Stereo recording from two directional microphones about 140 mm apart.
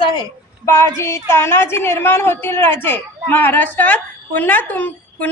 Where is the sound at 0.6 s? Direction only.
20° left (ahead or behind).